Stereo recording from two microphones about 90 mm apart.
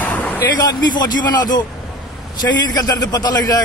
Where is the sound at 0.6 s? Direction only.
55° left (ahead or behind).